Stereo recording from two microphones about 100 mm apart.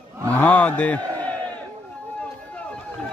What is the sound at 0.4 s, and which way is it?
Speech, 15° left (ahead or behind).